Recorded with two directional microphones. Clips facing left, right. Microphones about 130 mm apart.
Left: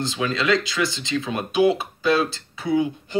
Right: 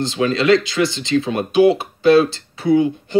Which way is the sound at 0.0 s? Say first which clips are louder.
Right 6 dB; 30° right (ahead or behind).